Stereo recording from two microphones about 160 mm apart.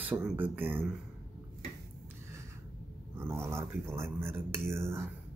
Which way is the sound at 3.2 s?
15° right (ahead or behind).